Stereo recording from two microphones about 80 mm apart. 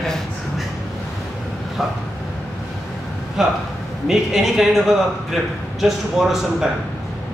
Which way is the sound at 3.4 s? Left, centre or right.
Centre.